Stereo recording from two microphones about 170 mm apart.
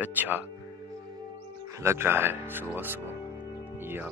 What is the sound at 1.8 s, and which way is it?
Speech, 15° right (ahead or behind).